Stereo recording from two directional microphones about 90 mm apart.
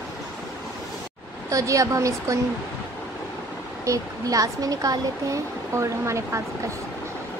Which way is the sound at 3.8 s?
40° right (ahead or behind).